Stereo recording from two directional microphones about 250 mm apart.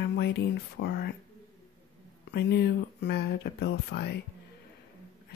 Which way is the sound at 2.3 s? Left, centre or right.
Left.